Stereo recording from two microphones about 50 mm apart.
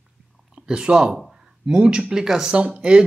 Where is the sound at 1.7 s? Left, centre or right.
Centre.